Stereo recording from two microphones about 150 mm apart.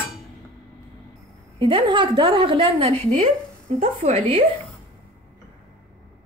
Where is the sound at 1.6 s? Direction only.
35° right (ahead or behind).